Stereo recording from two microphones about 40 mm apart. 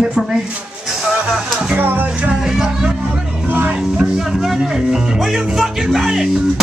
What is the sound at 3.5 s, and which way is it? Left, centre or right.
Music, right.